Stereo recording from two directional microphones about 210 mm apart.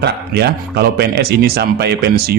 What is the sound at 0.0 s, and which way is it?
Speech, 50° right (ahead or behind).